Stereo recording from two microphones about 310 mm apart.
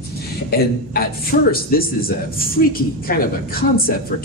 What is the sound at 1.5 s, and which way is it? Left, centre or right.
Speech, left.